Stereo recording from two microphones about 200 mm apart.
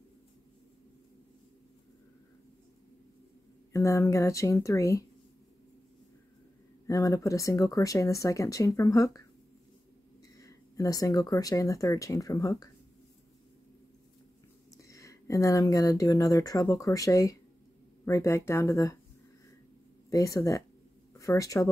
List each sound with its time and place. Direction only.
3.7 s speech: 15° left (ahead or behind)
6.9 s speech: 15° left (ahead or behind)
10.4 s speech: 15° left (ahead or behind)
14.7 s speech: 15° left (ahead or behind)
20.1 s speech: 15° left (ahead or behind)